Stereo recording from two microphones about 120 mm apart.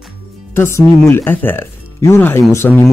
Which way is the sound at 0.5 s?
20° left (ahead or behind).